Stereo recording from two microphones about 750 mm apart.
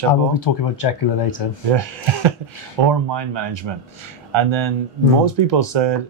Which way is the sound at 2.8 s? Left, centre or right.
Right.